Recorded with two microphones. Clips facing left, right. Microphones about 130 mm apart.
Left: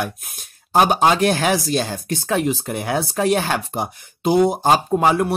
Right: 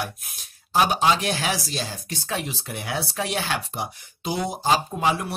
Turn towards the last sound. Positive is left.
turn(degrees=50)  # may be behind; listen again after turning